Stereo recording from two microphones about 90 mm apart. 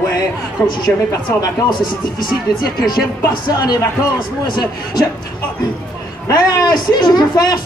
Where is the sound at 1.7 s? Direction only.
55° left (ahead or behind).